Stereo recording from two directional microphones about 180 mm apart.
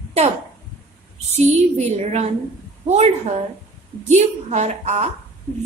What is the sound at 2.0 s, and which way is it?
A woman's voice, 35° right (ahead or behind).